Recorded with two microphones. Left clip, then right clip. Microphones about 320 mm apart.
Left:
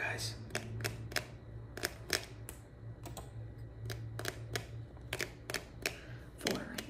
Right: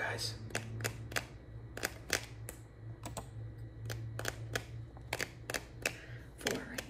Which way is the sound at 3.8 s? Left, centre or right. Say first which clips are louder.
Right 1 dB; centre.